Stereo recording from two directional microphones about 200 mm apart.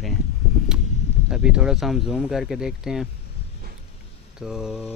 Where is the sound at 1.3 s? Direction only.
5° right (ahead or behind).